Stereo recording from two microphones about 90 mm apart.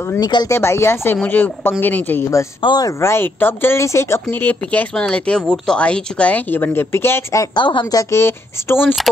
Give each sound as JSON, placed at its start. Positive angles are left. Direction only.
{"t": 0.2, "sound": "speech", "side_deg": 50}
{"t": 0.5, "sound": "speech", "side_deg": 30}
{"t": 1.1, "sound": "speech", "side_deg": 20}
{"t": 2.6, "sound": "speech", "side_deg": 65}
{"t": 3.0, "sound": "speech", "side_deg": 25}
{"t": 4.3, "sound": "speech", "side_deg": 20}
{"t": 7.5, "sound": "speech", "side_deg": 65}
{"t": 7.9, "sound": "speech", "side_deg": 40}
{"t": 8.2, "sound": "speech", "side_deg": 25}
{"t": 9.1, "sound": "speech", "side_deg": 0}